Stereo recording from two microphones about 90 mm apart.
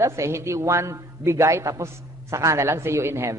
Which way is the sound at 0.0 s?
30° right (ahead or behind).